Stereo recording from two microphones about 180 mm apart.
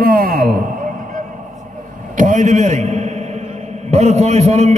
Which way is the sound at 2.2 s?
40° right (ahead or behind).